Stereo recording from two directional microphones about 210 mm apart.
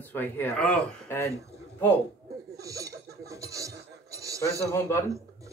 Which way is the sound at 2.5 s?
15° right (ahead or behind).